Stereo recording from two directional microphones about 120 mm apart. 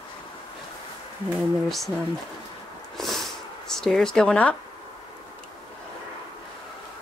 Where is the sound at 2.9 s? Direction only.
Centre (ahead or behind).